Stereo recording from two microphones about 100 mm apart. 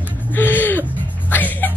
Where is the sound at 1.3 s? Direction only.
20° left (ahead or behind).